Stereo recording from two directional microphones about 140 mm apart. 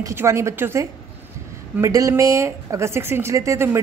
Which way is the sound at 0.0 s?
20° right (ahead or behind).